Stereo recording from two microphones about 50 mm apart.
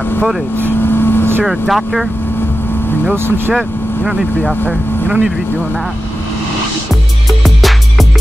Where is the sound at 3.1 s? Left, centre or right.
Right.